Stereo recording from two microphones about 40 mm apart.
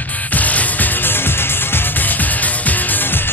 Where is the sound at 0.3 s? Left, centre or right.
Left.